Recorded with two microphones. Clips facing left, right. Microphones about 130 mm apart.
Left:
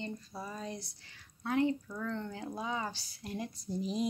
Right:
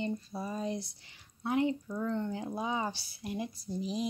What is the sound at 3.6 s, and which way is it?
Speech, centre (ahead or behind).